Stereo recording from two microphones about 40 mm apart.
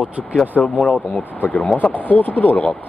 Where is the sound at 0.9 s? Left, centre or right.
Left.